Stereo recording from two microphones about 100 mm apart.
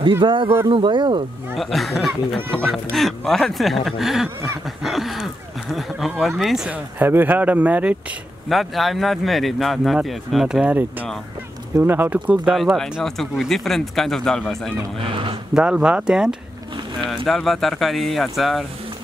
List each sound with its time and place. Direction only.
0.2 s speech: 60° right (ahead or behind)
1.6 s speech: centre (ahead or behind)
4.6 s a sound: centre (ahead or behind)
6.4 s speech: 5° right (ahead or behind)
6.7 s speech: 20° right (ahead or behind)
8.5 s speech: centre (ahead or behind); by 12.5 s 15° right (ahead or behind)
12.5 s speech: centre (ahead or behind)
15.5 s speech: 10° right (ahead or behind)